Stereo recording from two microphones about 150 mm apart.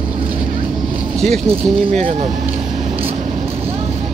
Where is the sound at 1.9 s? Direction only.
60° right (ahead or behind).